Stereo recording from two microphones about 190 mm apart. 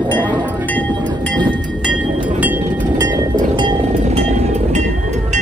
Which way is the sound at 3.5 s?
25° right (ahead or behind).